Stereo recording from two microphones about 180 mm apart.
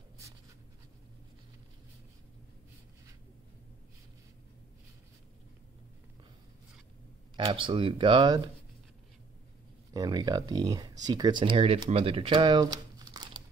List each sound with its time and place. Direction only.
7.3 s speech: 25° right (ahead or behind)
9.9 s speech: 20° right (ahead or behind)